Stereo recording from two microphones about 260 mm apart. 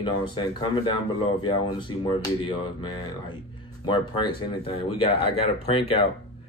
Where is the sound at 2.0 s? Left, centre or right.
Centre.